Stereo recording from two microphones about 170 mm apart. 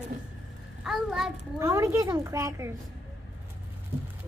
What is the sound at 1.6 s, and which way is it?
A woman's voice, 15° right (ahead or behind).